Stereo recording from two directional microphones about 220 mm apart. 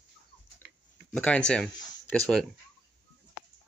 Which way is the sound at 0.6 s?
45° right (ahead or behind).